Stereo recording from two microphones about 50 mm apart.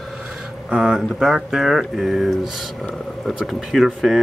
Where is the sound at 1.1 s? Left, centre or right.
Centre.